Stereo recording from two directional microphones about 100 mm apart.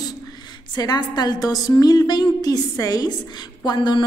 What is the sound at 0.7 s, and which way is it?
A woman's voice, 40° left (ahead or behind).